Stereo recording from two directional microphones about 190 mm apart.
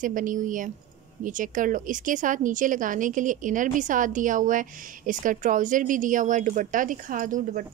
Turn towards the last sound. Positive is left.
turn(degrees=-45)  # may be behind; listen again after turning